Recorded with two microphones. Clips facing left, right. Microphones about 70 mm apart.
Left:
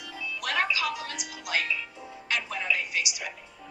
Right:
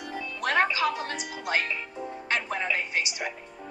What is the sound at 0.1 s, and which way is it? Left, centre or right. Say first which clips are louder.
A woman's voice: right 4 dB; right.